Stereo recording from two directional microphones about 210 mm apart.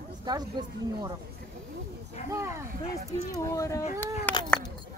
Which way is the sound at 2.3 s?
15° right (ahead or behind).